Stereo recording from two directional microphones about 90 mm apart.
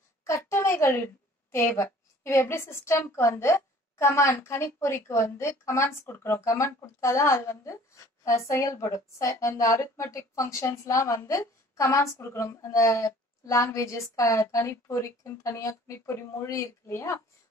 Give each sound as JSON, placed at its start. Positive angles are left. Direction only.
{"t": 0.2, "sound": "a woman's voice", "side_deg": 30}